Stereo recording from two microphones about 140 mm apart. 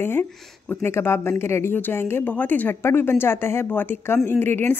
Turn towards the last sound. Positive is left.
turn(degrees=15)  # may be behind; listen again after turning